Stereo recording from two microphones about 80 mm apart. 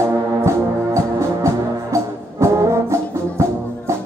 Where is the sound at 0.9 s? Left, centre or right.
Right.